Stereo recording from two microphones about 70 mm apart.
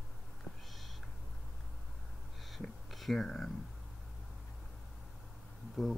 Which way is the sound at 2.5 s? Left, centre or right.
Centre.